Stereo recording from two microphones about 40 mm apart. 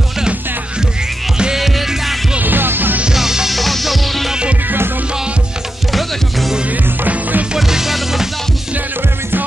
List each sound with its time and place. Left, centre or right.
1.6 s music: centre
2.4 s music: right
3.1 s music: centre
5.9 s music: centre
7.1 s music: right
7.5 s music: centre